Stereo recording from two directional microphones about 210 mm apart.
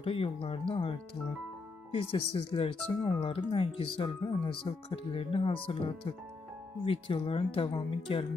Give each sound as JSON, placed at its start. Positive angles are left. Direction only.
{"t": 0.0, "sound": "speech", "side_deg": 25}